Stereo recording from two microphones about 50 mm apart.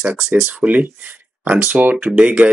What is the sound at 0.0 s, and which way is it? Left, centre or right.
Speech, centre.